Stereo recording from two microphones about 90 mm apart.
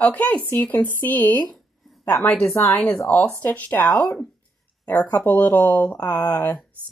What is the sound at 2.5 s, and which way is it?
Speech, 25° left (ahead or behind).